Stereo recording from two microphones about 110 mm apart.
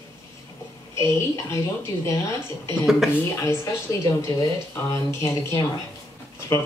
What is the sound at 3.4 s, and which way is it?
A woman's voice, 25° left (ahead or behind).